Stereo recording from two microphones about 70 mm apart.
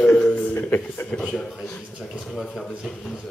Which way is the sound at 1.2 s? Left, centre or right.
Centre.